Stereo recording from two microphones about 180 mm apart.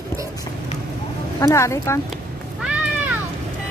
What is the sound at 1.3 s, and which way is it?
Speech, 15° left (ahead or behind).